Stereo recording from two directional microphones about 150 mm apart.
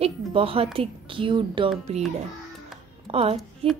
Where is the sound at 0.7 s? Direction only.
35° right (ahead or behind).